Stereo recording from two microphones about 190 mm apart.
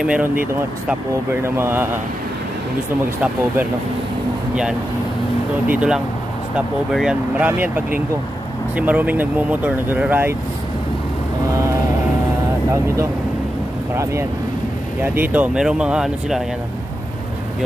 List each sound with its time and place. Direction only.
0.0 s speech: 5° right (ahead or behind)
1.4 s speech: 10° right (ahead or behind)
5.7 s speech: 5° right (ahead or behind)
12.7 s speech: 15° right (ahead or behind)
15.0 s speech: 10° right (ahead or behind)